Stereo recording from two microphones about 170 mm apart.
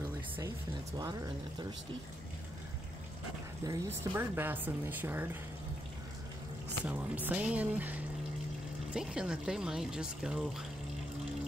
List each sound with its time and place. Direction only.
0.9 s speech: 25° right (ahead or behind)
3.6 s speech: 15° right (ahead or behind)
6.8 s speech: 10° right (ahead or behind)